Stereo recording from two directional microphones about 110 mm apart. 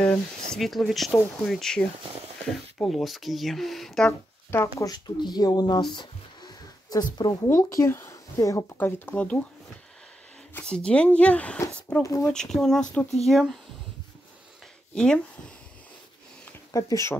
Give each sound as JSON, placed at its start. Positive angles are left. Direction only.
{"t": 0.0, "sound": "speech", "side_deg": 10}
{"t": 2.0, "sound": "speech", "side_deg": -65}
{"t": 2.8, "sound": "speech", "side_deg": 0}
{"t": 4.5, "sound": "speech", "side_deg": 20}
{"t": 4.8, "sound": "speech", "side_deg": 40}
{"t": 5.9, "sound": "a sound", "side_deg": 40}
{"t": 7.2, "sound": "speech", "side_deg": 30}
{"t": 8.7, "sound": "speech", "side_deg": 15}
{"t": 10.5, "sound": "speech", "side_deg": 10}
{"t": 12.0, "sound": "speech", "side_deg": 30}
{"t": 12.3, "sound": "speech", "side_deg": 5}
{"t": 15.0, "sound": "speech", "side_deg": 10}
{"t": 16.7, "sound": "speech", "side_deg": 30}